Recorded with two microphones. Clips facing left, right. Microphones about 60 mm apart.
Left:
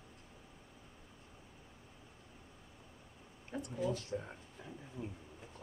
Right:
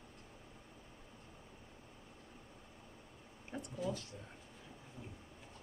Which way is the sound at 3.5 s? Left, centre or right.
Centre.